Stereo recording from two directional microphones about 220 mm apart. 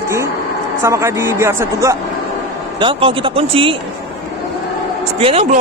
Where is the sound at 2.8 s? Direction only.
25° right (ahead or behind).